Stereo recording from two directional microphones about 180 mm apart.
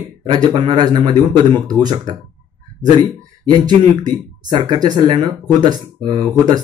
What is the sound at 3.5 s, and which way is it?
Speech, 25° right (ahead or behind).